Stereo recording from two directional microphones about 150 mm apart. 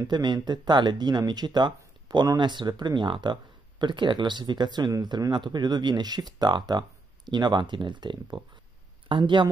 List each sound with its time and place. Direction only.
0.0 s speech: 30° right (ahead or behind)